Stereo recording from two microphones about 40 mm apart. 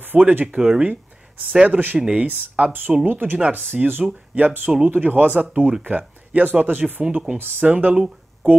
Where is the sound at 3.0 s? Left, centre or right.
Right.